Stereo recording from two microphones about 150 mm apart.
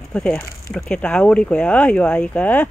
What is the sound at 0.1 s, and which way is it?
Speech, 10° left (ahead or behind).